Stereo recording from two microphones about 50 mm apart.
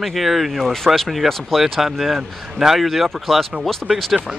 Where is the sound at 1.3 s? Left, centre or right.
Centre.